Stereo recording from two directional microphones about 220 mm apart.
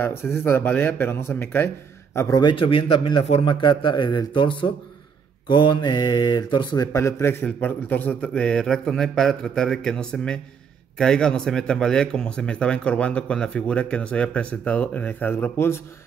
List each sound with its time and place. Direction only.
0.0 s a man's voice: 10° left (ahead or behind)